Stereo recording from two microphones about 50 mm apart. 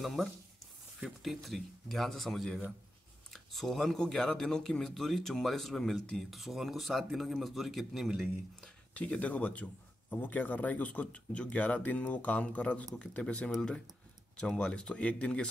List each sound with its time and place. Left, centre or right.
0.0 s speech: centre
8.9 s speech: left